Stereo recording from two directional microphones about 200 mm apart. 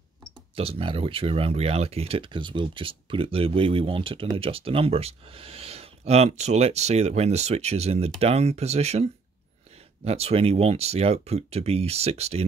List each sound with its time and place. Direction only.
0.6 s speech: 30° right (ahead or behind)